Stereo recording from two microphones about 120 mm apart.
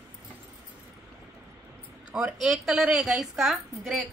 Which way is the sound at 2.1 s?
5° right (ahead or behind).